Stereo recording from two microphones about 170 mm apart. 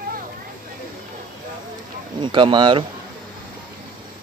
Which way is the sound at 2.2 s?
30° right (ahead or behind).